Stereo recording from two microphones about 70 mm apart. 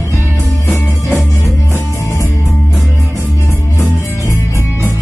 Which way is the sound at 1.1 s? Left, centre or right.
Left.